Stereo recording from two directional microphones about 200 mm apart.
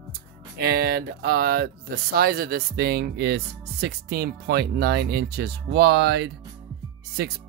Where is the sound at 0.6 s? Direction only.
55° right (ahead or behind).